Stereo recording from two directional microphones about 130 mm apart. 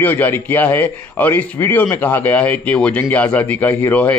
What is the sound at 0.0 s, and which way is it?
A man's voice, 15° left (ahead or behind).